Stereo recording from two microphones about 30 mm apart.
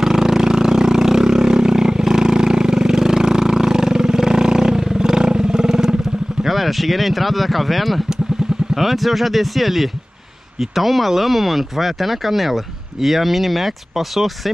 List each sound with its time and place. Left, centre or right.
0.0 s vehicle: centre
6.4 s speech: centre